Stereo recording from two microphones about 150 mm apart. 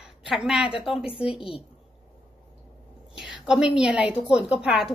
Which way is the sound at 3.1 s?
5° right (ahead or behind).